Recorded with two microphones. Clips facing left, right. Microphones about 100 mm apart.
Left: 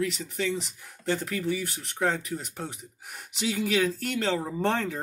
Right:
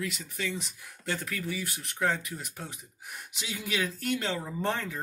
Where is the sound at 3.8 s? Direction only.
45° left (ahead or behind).